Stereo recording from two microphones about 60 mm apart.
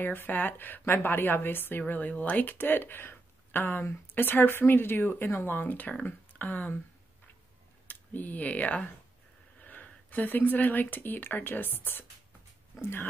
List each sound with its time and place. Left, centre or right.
0.0 s a woman's voice: left
7.9 s a woman's voice: left